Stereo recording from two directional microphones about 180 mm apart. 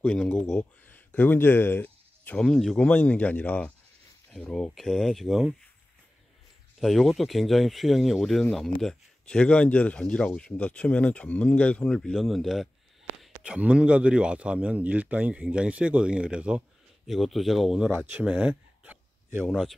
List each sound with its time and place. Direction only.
0.0 s speech: 5° left (ahead or behind)
6.8 s speech: centre (ahead or behind)
19.4 s speech: centre (ahead or behind)